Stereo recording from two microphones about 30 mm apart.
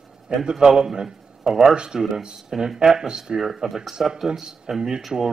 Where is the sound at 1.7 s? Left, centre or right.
Right.